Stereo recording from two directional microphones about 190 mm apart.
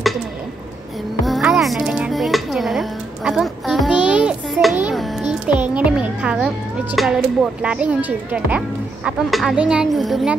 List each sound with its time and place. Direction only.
1.2 s music: centre (ahead or behind)
4.7 s child singing: 5° right (ahead or behind)
5.3 s music: 5° right (ahead or behind)
7.6 s speech: 5° right (ahead or behind)